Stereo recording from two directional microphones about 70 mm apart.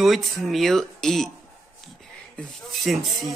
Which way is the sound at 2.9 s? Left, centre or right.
Centre.